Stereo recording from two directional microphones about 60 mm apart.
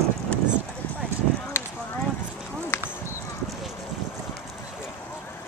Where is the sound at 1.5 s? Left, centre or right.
Left.